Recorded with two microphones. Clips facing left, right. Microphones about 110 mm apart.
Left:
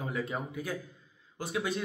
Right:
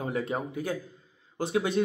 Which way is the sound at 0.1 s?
40° right (ahead or behind).